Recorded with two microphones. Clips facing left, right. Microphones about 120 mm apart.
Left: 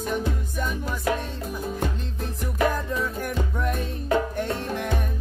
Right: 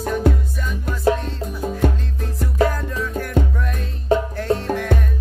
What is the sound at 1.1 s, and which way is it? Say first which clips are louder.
Music: right 7 dB; 30° right (ahead or behind).